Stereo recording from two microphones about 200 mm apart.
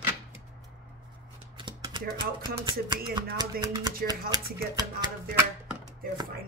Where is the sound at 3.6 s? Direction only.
20° right (ahead or behind).